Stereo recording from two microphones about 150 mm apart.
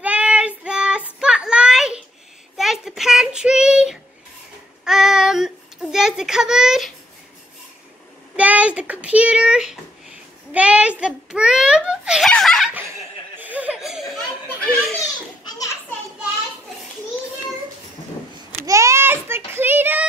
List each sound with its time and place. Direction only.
0.0 s child singing: 10° right (ahead or behind)
8.4 s a sound: 10° right (ahead or behind)
12.3 s laughter: 5° left (ahead or behind)
13.4 s laughter: 10° right (ahead or behind)
14.7 s children playing: 10° left (ahead or behind)
15.0 s children playing: 20° left (ahead or behind)
18.6 s a sound: 20° right (ahead or behind)